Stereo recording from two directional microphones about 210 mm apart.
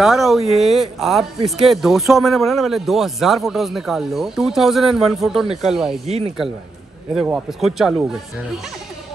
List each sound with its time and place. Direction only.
0.0 s speech: centre (ahead or behind)
6.0 s speech: 30° right (ahead or behind)
7.2 s speech: 5° right (ahead or behind)